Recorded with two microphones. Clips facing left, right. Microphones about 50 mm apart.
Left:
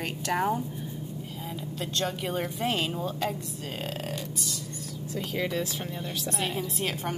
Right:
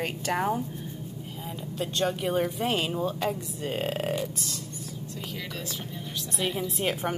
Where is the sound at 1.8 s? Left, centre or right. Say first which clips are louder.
Right 4 dB; centre.